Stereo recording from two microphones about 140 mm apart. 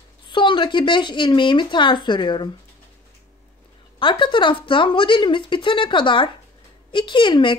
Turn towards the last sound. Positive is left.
turn(degrees=35)  # may be behind; listen again after turning